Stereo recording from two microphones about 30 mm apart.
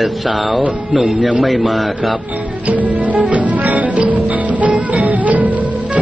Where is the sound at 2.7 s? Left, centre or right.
Right.